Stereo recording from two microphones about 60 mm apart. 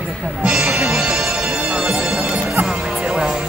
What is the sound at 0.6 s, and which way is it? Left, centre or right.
Music, centre.